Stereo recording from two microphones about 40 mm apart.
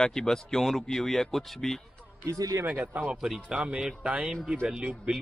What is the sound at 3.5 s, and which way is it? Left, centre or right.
Speech, right.